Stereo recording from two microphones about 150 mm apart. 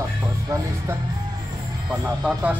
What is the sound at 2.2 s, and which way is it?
Speech, 10° right (ahead or behind).